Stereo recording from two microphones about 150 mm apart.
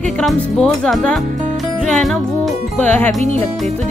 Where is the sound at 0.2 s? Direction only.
Centre (ahead or behind).